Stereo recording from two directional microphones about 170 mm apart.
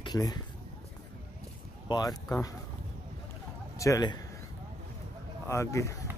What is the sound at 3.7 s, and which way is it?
Speech, 20° left (ahead or behind).